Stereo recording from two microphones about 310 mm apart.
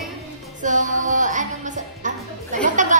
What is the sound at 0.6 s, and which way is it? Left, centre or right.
Music, right.